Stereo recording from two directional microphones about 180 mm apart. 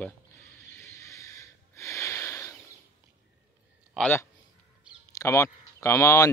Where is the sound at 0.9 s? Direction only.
15° left (ahead or behind).